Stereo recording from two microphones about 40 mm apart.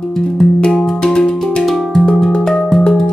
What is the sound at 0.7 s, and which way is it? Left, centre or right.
Music, centre.